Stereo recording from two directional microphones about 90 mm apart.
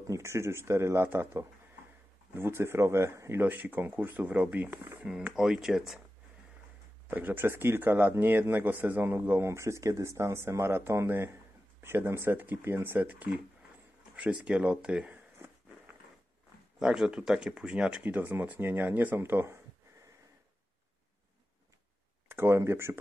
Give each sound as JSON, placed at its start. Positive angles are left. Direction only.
{"t": 0.0, "sound": "speech", "side_deg": -35}
{"t": 5.3, "sound": "speech", "side_deg": -5}
{"t": 7.1, "sound": "speech", "side_deg": -20}
{"t": 9.5, "sound": "speech", "side_deg": -30}
{"t": 16.8, "sound": "speech", "side_deg": -5}
{"t": 18.0, "sound": "speech", "side_deg": -20}
{"t": 22.3, "sound": "speech", "side_deg": -30}